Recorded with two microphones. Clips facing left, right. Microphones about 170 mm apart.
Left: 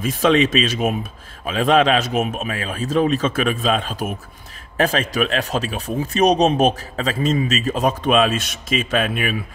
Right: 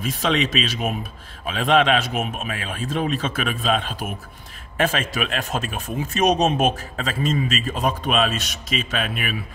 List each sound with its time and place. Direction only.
0.0 s a man's voice: 45° left (ahead or behind)